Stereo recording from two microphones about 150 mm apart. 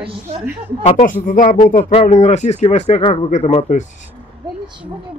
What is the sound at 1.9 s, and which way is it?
Speech, 50° left (ahead or behind).